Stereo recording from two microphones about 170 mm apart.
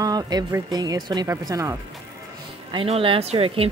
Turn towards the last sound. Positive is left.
turn(degrees=-35)  # may be behind; listen again after turning